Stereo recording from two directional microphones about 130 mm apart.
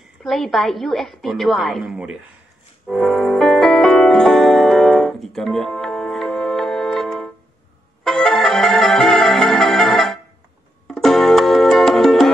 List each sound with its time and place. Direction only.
0.2 s a woman's voice: centre (ahead or behind)
2.9 s music: centre (ahead or behind)